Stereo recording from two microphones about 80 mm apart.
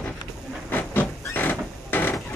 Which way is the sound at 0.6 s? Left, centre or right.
Left.